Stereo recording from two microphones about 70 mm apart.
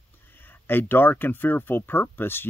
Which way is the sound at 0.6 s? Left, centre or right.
Left.